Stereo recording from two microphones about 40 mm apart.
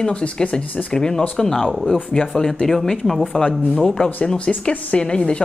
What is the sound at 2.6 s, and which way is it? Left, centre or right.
Speech, centre.